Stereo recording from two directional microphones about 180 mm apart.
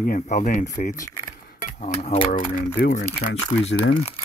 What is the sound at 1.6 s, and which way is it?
Speech, 40° left (ahead or behind).